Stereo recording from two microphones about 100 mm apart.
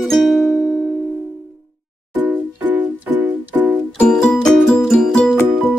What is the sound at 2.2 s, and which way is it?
Music, 15° right (ahead or behind).